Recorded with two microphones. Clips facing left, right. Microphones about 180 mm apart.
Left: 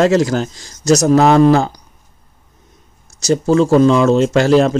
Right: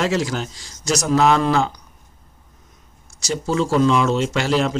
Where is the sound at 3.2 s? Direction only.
50° left (ahead or behind).